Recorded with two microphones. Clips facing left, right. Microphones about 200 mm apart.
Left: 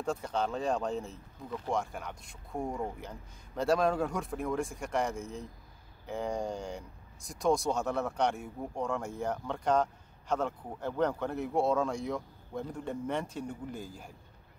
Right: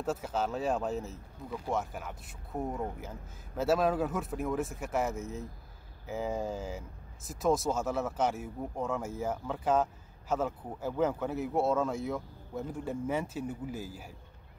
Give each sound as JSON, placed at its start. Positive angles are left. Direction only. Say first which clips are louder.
{"t": 0.0, "sound": "speech", "louder": "even", "side_deg": -5}